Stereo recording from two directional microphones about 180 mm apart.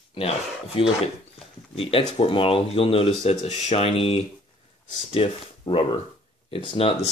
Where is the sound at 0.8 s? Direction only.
30° left (ahead or behind).